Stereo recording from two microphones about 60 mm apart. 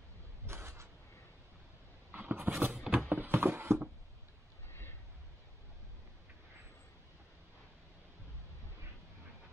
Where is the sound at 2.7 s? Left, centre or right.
Centre.